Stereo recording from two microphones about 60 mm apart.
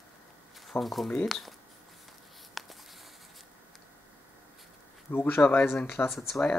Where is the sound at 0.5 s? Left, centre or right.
Centre.